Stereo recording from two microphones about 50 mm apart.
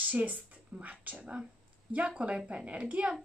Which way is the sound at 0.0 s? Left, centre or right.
Right.